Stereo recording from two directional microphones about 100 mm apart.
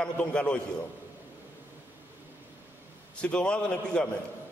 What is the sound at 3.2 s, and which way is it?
Speech, 10° left (ahead or behind).